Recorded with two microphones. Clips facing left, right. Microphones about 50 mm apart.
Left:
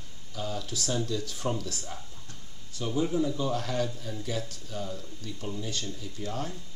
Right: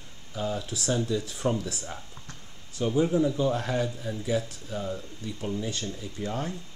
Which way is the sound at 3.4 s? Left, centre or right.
Right.